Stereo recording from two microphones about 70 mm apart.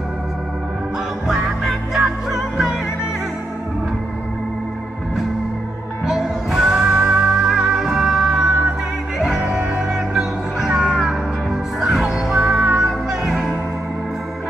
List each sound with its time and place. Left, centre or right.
1.2 s music: centre
6.0 s music: centre
12.4 s music: right
12.7 s music: centre